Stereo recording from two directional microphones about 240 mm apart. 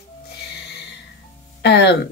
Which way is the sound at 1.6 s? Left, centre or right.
Left.